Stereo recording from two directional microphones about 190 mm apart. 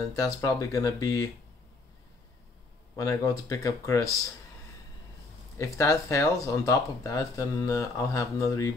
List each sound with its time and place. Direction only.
0.1 s speech: 20° left (ahead or behind)
3.0 s speech: 20° left (ahead or behind)
5.6 s speech: 15° left (ahead or behind)